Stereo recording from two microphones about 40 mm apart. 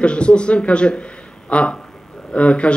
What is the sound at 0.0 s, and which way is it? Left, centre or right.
Speech, left.